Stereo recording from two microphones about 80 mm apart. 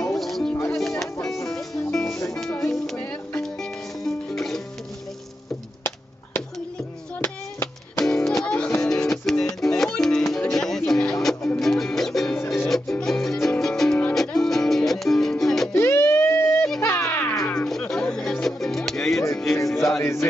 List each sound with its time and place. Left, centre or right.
0.0 s music: centre
4.0 s music: centre
7.2 s music: left
8.0 s music: centre
15.7 s a sound: left
16.8 s music: left
17.6 s music: centre
19.5 s music: left